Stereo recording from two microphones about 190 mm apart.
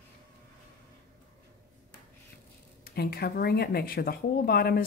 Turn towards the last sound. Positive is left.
turn(degrees=55)  # may be behind; listen again after turning